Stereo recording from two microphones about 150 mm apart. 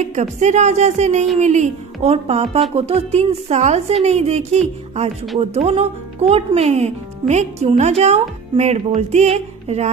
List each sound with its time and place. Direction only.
0.0 s speech: 50° right (ahead or behind)